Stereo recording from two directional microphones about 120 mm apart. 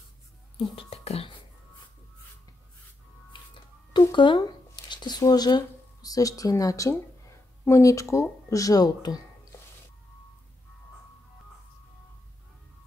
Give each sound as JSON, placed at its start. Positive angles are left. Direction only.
{"t": 0.7, "sound": "beatboxing", "side_deg": 55}
{"t": 3.5, "sound": "a sound", "side_deg": 40}
{"t": 5.2, "sound": "speech", "side_deg": 35}